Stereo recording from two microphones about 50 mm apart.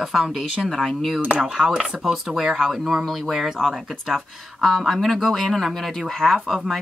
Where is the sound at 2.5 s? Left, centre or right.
Centre.